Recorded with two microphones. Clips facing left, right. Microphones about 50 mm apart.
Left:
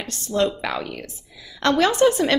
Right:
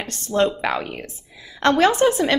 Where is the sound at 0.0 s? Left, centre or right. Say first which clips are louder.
Right 2 dB; right.